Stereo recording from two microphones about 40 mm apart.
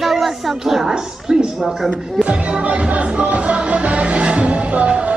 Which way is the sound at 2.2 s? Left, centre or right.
Right.